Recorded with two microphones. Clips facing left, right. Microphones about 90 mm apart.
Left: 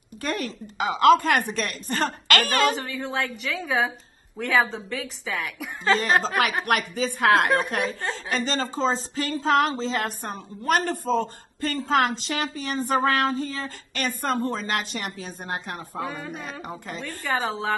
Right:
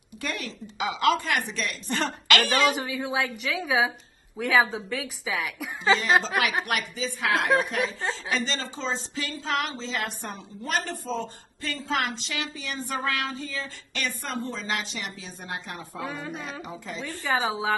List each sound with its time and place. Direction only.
0.2 s a woman's voice: 40° left (ahead or behind)
2.8 s a woman's voice: 10° right (ahead or behind)
6.6 s a woman's voice: 50° left (ahead or behind)
16.0 s a woman's voice: centre (ahead or behind)
16.6 s a woman's voice: 50° left (ahead or behind)
17.2 s a woman's voice: centre (ahead or behind)